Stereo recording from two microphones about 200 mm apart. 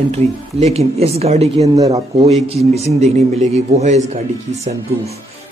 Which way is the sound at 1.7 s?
15° right (ahead or behind).